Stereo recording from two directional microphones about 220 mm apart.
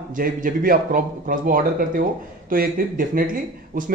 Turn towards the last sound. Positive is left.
turn(degrees=-40)  # may be behind; listen again after turning